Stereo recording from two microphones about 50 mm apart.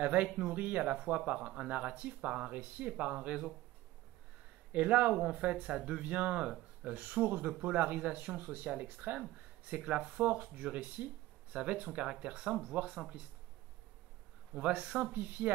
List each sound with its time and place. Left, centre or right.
0.0 s speech: right
4.7 s speech: right
9.7 s speech: right
14.5 s speech: right